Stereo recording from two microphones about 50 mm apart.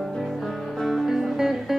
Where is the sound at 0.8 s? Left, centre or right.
Centre.